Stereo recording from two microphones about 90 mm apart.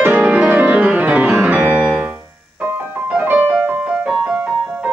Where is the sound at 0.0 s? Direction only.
15° right (ahead or behind).